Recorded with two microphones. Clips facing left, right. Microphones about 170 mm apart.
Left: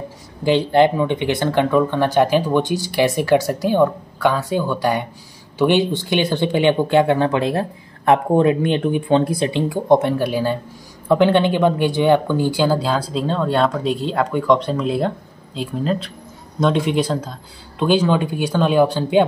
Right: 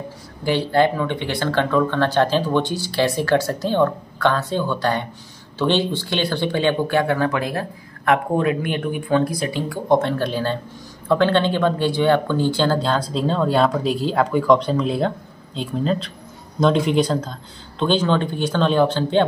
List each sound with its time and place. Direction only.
0.4 s speech: 20° left (ahead or behind)